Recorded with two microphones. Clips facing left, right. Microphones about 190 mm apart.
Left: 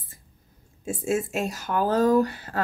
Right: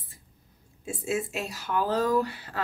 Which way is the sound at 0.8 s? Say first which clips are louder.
Left 4 dB; 50° left (ahead or behind).